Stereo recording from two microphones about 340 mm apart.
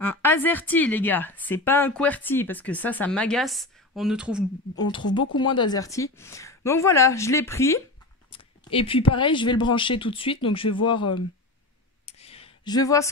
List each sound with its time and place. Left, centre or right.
0.0 s speech: centre
4.7 s speech: centre
5.2 s speech: left
5.5 s speech: centre
12.1 s a sound: centre